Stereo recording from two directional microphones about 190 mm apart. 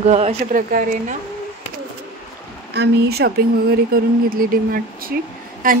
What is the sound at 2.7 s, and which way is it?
Speech, 60° right (ahead or behind).